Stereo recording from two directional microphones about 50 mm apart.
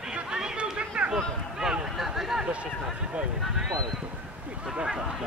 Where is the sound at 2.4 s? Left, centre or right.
Right.